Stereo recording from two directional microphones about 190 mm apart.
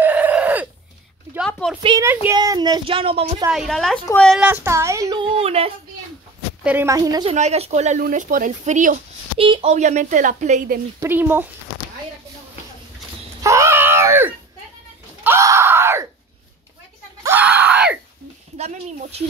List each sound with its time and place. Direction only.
0.0 s a sound: 10° right (ahead or behind)
1.6 s speech: 5° left (ahead or behind)
2.0 s a woman's voice: 15° right (ahead or behind)
3.5 s a woman's voice: centre (ahead or behind)
4.6 s a woman's voice: 15° right (ahead or behind)
5.2 s a woman's voice: 30° right (ahead or behind)
6.6 s a woman's voice: 10° right (ahead or behind)
7.3 s speech: 35° right (ahead or behind)
9.4 s speech: 30° right (ahead or behind)
11.0 s a woman's voice: 10° right (ahead or behind)
13.4 s screaming: 15° right (ahead or behind)
17.2 s screaming: 10° right (ahead or behind)
18.6 s speech: 35° right (ahead or behind)